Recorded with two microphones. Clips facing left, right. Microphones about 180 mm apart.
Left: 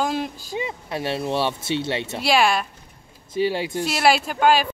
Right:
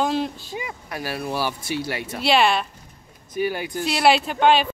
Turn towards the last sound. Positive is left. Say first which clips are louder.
# right 1 dB
turn(degrees=5)  # may be behind; listen again after turning